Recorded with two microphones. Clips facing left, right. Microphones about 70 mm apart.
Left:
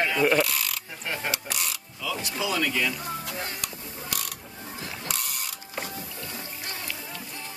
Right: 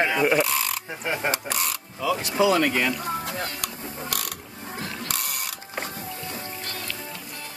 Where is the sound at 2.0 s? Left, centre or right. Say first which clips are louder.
Right 9 dB; right.